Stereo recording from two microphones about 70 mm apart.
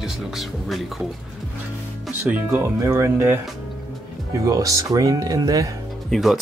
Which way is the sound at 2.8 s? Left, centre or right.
Right.